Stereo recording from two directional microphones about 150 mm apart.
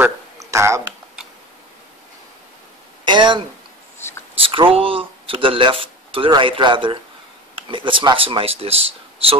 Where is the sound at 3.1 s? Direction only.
30° right (ahead or behind).